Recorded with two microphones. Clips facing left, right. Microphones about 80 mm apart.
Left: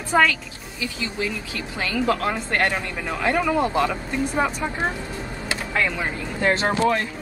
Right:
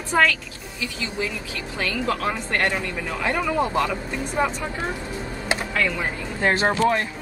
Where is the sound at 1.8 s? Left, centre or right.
Centre.